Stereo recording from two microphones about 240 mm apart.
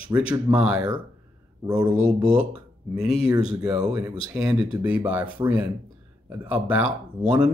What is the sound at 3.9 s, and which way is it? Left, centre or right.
Speech, centre.